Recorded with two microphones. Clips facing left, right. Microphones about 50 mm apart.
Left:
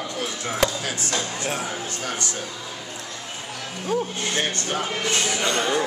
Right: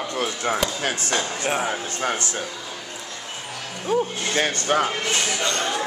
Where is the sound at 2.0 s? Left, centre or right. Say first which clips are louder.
Right 7 dB; right.